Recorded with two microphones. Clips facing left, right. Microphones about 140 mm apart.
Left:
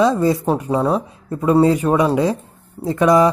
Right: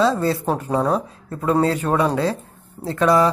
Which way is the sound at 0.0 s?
15° left (ahead or behind).